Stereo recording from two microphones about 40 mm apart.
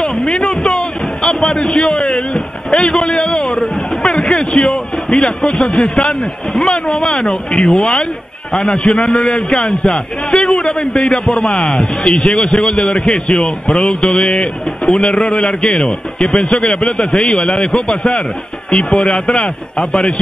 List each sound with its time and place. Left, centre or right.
0.3 s music: centre
2.8 s a sound: left
5.6 s a man's voice: left